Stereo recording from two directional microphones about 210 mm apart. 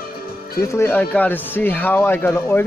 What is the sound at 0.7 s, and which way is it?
Speech, 10° left (ahead or behind).